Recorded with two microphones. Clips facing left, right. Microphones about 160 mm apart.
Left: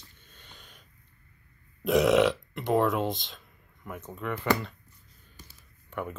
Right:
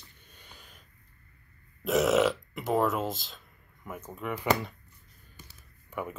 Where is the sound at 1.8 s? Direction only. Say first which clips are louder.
Left 2 dB; centre (ahead or behind).